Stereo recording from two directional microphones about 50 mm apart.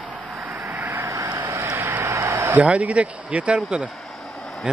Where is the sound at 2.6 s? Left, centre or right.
Right.